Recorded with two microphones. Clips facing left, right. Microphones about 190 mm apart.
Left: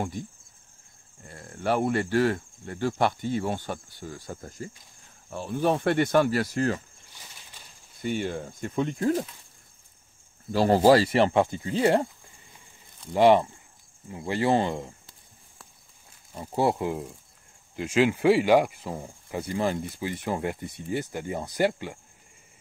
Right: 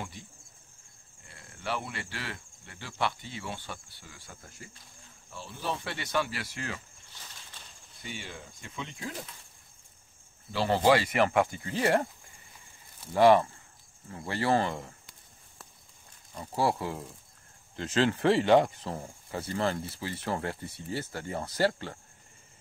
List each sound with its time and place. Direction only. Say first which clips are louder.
0.2 s speech: left 12 dB; 45° left (ahead or behind)
5.3 s speech: left 11 dB; 55° left (ahead or behind)
8.0 s speech: left 13 dB; 50° left (ahead or behind)
10.5 s speech: left 6 dB; 45° left (ahead or behind); by 12.1 s 20° left (ahead or behind)
13.1 s speech: left 2 dB; 20° left (ahead or behind)
16.3 s speech: left 4 dB; 20° left (ahead or behind)